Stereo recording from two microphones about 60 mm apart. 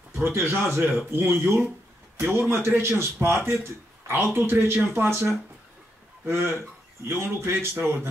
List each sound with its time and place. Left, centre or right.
0.1 s a man's voice: right